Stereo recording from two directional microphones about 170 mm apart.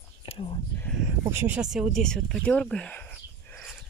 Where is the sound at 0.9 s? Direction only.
10° right (ahead or behind); by 3.6 s 10° left (ahead or behind).